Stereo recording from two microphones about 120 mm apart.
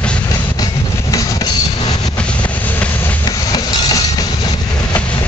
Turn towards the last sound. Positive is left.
turn(degrees=30)  # may be behind; listen again after turning